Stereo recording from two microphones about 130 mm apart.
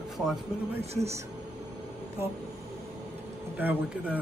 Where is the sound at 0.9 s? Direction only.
20° right (ahead or behind).